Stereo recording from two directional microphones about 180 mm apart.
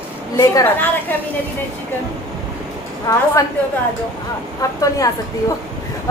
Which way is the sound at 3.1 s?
20° left (ahead or behind).